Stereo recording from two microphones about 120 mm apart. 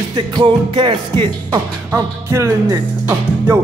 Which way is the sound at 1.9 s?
20° right (ahead or behind).